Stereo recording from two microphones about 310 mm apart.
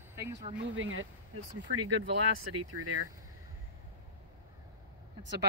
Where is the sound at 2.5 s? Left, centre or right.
Right.